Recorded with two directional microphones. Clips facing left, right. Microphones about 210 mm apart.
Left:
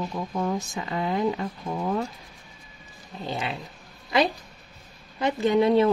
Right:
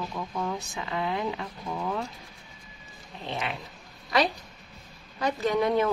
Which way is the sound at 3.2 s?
30° left (ahead or behind).